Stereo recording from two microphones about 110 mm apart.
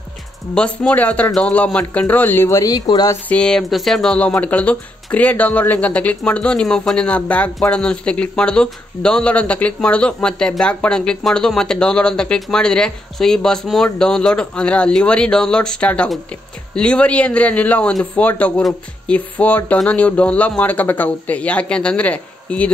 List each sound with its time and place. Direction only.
0.6 s speech: 10° left (ahead or behind); by 3.2 s 35° left (ahead or behind)
3.3 s speech: 10° left (ahead or behind)
18.6 s speech: centre (ahead or behind)
19.1 s speech: 15° left (ahead or behind)